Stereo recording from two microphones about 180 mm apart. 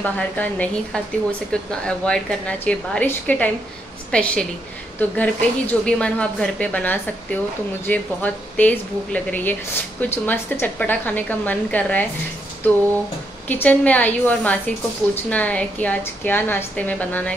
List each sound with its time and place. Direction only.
0.0 s a woman's voice: 10° left (ahead or behind)
13.5 s speech: 10° left (ahead or behind)